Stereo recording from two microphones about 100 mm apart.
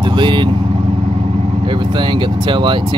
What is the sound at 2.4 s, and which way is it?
Speech, 55° right (ahead or behind).